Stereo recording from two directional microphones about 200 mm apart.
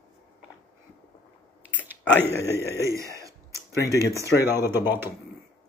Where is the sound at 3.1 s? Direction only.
15° right (ahead or behind).